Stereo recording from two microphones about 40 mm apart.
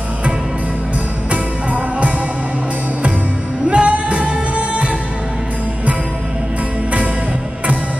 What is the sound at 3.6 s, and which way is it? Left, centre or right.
Music, right.